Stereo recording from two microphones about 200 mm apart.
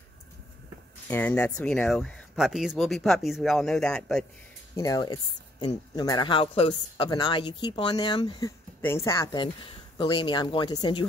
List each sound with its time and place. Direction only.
1.0 s speech: 10° left (ahead or behind)
4.7 s speech: 20° left (ahead or behind)